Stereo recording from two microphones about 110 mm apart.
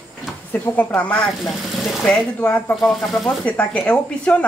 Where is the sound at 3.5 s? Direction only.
15° left (ahead or behind).